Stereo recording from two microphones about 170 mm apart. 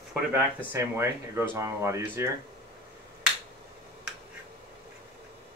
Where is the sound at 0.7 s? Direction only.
15° right (ahead or behind).